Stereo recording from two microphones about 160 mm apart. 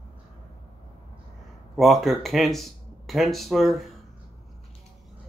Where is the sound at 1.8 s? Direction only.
Centre (ahead or behind).